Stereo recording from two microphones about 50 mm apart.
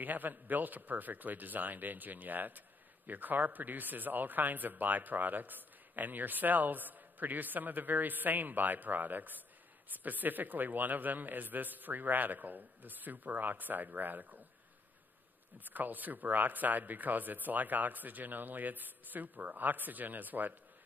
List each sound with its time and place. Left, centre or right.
0.0 s speech: right
15.6 s speech: right